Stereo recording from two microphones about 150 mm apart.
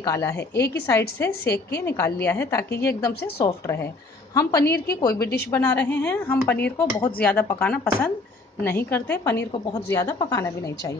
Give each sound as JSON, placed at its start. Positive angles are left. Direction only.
{"t": 0.0, "sound": "a woman's voice", "side_deg": 20}
{"t": 0.4, "sound": "a woman's voice", "side_deg": 90}
{"t": 0.8, "sound": "speech", "side_deg": 15}
{"t": 1.4, "sound": "a woman's voice", "side_deg": 90}
{"t": 1.8, "sound": "speech", "side_deg": 15}
{"t": 2.7, "sound": "a woman's voice", "side_deg": 90}
{"t": 3.4, "sound": "a woman's voice", "side_deg": 20}
{"t": 4.6, "sound": "a woman's voice", "side_deg": 90}
{"t": 5.5, "sound": "a woman's voice", "side_deg": 15}